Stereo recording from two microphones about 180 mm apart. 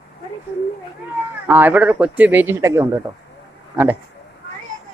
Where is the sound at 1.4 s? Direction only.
10° right (ahead or behind).